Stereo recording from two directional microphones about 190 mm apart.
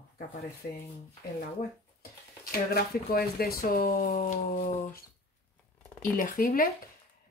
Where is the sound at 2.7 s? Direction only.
50° left (ahead or behind).